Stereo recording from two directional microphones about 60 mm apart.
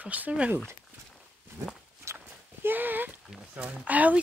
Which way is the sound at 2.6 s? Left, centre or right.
Right.